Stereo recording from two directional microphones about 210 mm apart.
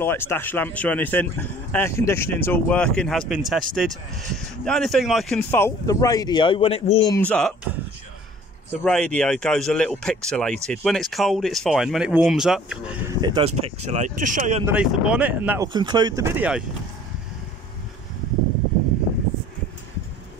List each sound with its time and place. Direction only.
0.0 s speech: 10° left (ahead or behind)
5.5 s speech: 15° left (ahead or behind)
7.2 s speech: 5° left (ahead or behind)
8.8 s speech: 5° left (ahead or behind)
13.2 s speech: 20° right (ahead or behind); by 14.6 s 35° right (ahead or behind)
14.7 s speech: 5° right (ahead or behind)
15.7 s speech: 20° right (ahead or behind)